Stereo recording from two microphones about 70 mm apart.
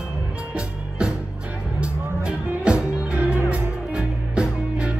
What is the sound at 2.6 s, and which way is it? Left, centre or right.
Music, centre.